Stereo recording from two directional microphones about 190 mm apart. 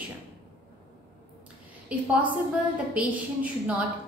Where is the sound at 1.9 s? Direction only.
5° right (ahead or behind).